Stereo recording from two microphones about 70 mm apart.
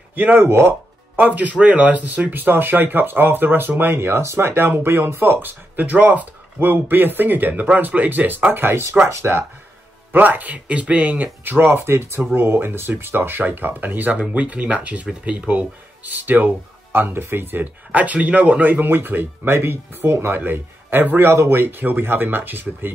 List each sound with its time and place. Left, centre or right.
0.1 s speech: right
1.2 s speech: right